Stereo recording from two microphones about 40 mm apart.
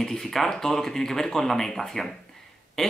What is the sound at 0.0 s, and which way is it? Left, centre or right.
Speech, centre.